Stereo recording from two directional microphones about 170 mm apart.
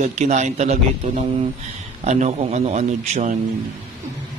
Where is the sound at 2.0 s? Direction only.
45° right (ahead or behind).